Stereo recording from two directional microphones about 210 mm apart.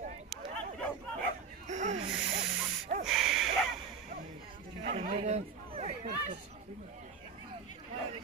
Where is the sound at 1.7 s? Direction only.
35° right (ahead or behind).